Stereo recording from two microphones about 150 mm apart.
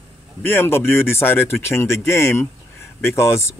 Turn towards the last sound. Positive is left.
turn(degrees=15)  # may be behind; listen again after turning